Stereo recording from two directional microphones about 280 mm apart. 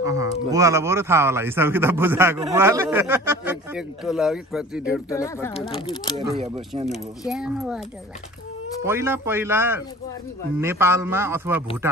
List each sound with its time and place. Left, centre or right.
0.0 s speech: centre
5.1 s speech: centre
6.9 s speech: centre
8.8 s speech: centre